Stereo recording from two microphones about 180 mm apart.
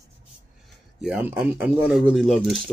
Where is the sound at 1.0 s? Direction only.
5° right (ahead or behind).